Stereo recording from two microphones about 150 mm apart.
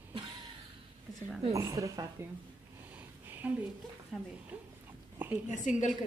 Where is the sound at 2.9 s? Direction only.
10° right (ahead or behind).